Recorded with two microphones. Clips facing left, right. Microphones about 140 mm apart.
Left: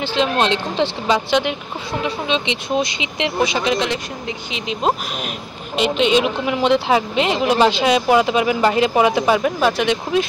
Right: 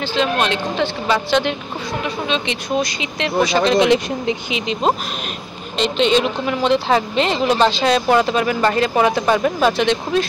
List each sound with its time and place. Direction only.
0.1 s a woman's voice: 25° left (ahead or behind)
4.5 s a woman's voice: centre (ahead or behind)